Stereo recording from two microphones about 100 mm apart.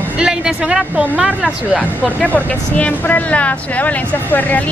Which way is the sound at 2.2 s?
10° left (ahead or behind).